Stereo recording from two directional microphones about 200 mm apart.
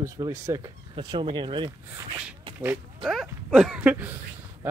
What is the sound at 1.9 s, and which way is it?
Speech, 5° right (ahead or behind).